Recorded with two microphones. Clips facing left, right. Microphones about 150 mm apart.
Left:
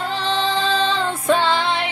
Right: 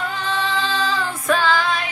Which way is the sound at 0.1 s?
30° left (ahead or behind).